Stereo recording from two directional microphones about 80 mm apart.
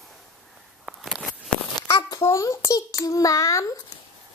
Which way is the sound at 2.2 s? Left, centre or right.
Left.